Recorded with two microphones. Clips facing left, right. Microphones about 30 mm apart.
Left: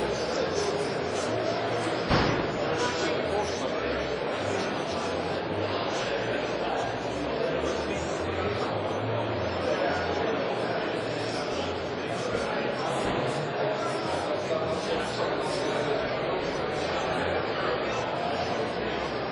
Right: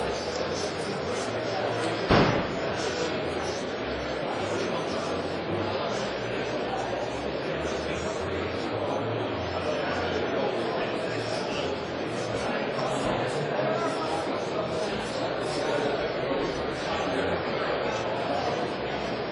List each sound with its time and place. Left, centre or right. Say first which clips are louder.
2.0 s slam: right 5 dB; right